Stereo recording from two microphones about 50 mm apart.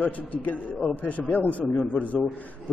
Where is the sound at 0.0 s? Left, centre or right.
Left.